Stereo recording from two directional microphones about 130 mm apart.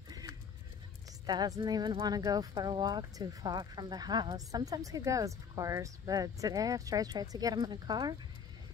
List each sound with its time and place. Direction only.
1.2 s speech: 30° right (ahead or behind)